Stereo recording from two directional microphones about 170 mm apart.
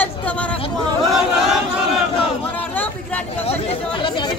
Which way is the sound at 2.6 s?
10° left (ahead or behind).